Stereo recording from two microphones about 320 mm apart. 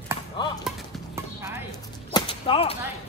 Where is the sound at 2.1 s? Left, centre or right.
Centre.